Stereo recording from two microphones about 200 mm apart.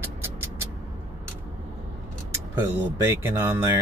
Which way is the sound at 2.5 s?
15° right (ahead or behind).